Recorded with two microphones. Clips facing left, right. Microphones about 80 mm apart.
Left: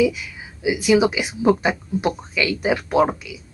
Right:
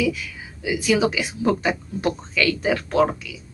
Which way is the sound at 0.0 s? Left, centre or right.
Centre.